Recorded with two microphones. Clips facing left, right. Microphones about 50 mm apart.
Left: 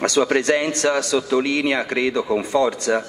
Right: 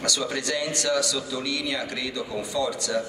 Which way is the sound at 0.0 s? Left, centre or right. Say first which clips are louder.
Left 10 dB; left.